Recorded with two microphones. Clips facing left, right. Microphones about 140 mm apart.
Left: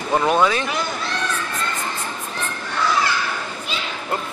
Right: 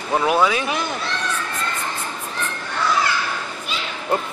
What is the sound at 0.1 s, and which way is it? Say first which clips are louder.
Speech: even; 5° right (ahead or behind).